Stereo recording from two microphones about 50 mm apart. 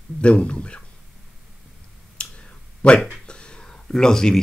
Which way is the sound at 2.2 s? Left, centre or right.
Left.